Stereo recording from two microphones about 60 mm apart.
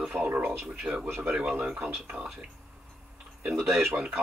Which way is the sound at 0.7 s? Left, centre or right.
Centre.